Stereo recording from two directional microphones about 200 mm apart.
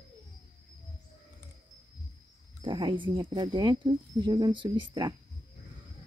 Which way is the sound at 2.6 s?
25° right (ahead or behind).